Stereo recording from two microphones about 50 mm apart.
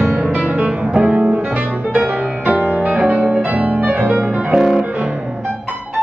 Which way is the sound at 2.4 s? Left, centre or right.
Right.